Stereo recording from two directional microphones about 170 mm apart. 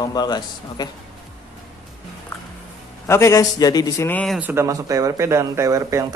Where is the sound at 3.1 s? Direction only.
15° left (ahead or behind).